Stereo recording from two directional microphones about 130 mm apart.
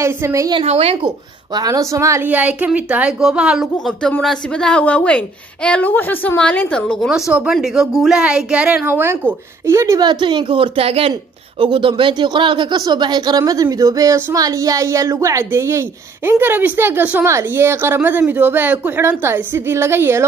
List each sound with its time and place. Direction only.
0.0 s speech: 20° right (ahead or behind)
0.7 s speech: 50° right (ahead or behind)
1.0 s a woman's voice: 30° right (ahead or behind); by 3.6 s 5° right (ahead or behind)
3.7 s speech: 5° left (ahead or behind)
7.1 s a woman's voice: 5° right (ahead or behind)